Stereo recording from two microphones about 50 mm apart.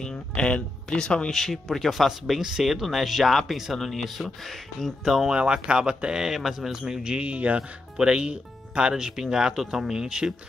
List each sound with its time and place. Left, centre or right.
0.0 s speech: centre
1.3 s speech: centre
5.3 s speech: centre
7.2 s speech: right